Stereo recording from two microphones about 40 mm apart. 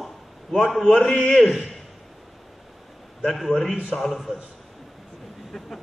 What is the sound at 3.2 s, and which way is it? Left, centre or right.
A man's voice, centre.